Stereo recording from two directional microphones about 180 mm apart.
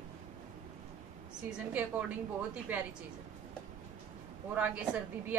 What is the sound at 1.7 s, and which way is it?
A woman's voice, 10° right (ahead or behind).